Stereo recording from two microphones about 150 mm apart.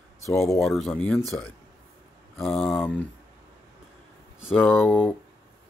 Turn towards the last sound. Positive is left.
turn(degrees=10)  # may be behind; listen again after turning